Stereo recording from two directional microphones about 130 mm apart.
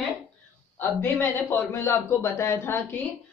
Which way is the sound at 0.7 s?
15° left (ahead or behind).